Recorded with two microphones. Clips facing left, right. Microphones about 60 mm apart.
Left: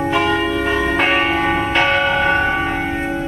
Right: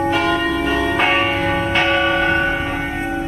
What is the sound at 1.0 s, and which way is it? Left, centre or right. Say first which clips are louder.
Church bell: left 1 dB; centre.